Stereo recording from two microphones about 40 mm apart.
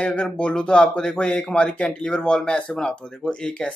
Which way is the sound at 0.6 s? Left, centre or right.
Left.